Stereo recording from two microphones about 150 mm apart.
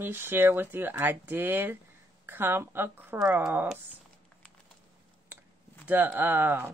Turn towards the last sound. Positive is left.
turn(degrees=-15)  # may be behind; listen again after turning